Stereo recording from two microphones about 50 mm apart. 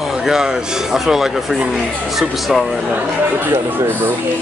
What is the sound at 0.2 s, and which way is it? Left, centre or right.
A man's voice, centre.